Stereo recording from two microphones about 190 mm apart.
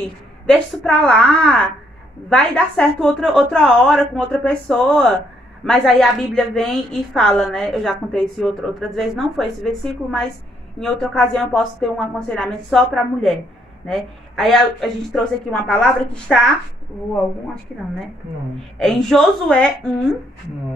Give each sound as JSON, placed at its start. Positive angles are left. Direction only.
{"t": 0.5, "sound": "a woman's voice", "side_deg": 0}
{"t": 18.8, "sound": "a woman's voice", "side_deg": 0}